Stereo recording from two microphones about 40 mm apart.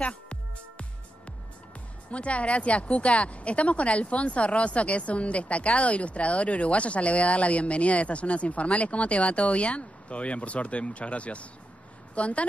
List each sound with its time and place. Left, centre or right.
0.0 s music: left
2.0 s a woman's voice: left